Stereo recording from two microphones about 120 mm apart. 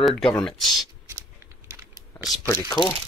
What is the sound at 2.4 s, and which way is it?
Speech, 30° left (ahead or behind).